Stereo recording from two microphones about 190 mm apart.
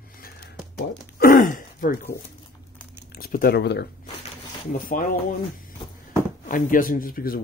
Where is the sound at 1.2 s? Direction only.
50° left (ahead or behind).